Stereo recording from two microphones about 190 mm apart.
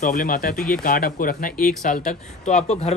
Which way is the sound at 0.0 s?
45° left (ahead or behind).